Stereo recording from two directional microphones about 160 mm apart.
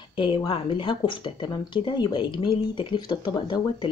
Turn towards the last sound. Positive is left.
turn(degrees=30)  # may be behind; listen again after turning